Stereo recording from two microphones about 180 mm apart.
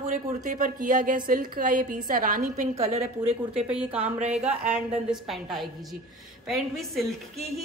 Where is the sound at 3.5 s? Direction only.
5° right (ahead or behind).